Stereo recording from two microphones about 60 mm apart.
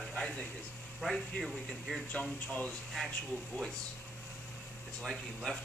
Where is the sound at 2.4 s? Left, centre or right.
Left.